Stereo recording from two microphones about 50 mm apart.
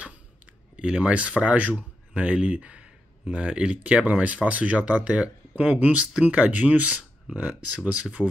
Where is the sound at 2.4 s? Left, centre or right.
Right.